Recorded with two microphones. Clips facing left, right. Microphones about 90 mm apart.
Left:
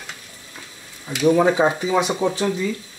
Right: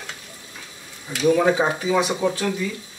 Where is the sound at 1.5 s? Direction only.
15° left (ahead or behind).